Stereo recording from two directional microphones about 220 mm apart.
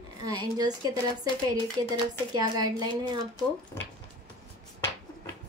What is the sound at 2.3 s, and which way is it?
Speech, 20° right (ahead or behind).